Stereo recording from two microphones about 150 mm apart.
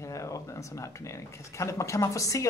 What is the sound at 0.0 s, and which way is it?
Speech, 20° left (ahead or behind).